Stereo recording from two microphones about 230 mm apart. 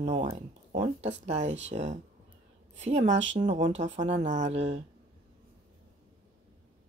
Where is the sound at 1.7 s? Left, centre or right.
Right.